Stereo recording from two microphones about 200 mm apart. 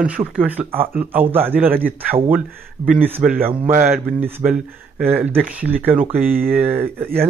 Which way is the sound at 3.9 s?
10° right (ahead or behind).